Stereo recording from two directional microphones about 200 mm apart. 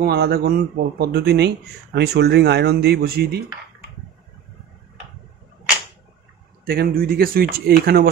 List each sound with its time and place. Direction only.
0.0 s speech: 50° right (ahead or behind)
6.6 s speech: 50° right (ahead or behind)